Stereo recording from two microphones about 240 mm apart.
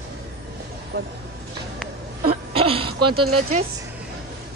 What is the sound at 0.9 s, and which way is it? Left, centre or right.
Speech, right.